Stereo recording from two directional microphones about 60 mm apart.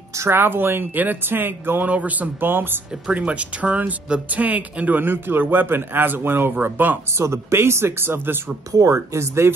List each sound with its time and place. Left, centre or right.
0.3 s speech: right
2.9 s speech: right
7.2 s speech: right
8.7 s speech: right